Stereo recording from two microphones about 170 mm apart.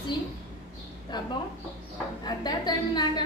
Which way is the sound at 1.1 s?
25° left (ahead or behind).